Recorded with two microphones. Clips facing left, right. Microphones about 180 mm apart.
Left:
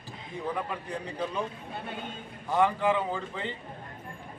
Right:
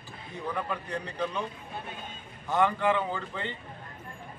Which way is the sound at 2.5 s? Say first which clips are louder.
Even; 5° left (ahead or behind).